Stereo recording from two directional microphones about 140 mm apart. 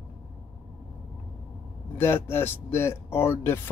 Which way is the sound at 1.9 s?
15° left (ahead or behind).